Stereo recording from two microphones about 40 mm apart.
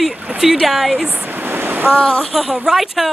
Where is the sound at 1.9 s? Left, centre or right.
Left.